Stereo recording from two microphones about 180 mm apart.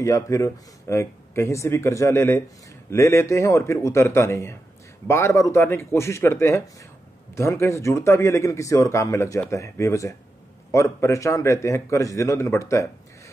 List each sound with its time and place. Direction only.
0.0 s a man's voice: 15° left (ahead or behind)